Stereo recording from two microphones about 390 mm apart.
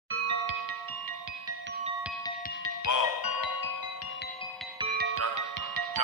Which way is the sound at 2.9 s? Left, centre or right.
Left.